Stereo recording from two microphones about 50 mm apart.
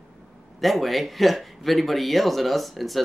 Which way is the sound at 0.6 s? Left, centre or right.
Centre.